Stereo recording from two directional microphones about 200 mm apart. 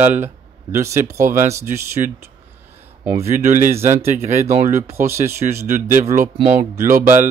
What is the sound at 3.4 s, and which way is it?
Speech, 40° right (ahead or behind).